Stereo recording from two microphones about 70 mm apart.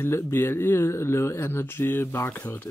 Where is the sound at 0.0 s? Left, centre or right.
Left.